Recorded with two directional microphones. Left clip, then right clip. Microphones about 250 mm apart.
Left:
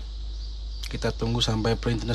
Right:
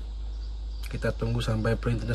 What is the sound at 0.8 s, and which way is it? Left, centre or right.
Speech, centre.